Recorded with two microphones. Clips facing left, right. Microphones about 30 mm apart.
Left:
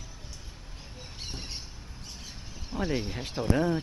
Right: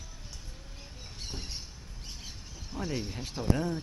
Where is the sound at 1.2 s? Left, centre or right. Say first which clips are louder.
Left 1 dB; centre.